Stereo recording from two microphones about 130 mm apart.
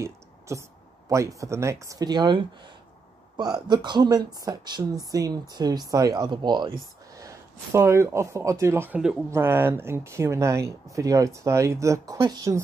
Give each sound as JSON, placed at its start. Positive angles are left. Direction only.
{"t": 0.0, "sound": "speech", "side_deg": -20}